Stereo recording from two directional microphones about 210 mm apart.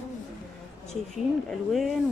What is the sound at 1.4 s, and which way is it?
Speech, centre (ahead or behind).